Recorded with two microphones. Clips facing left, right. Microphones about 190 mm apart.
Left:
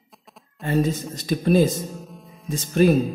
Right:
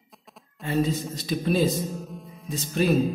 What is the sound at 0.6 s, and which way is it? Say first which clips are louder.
Speech: left 3 dB; 45° left (ahead or behind).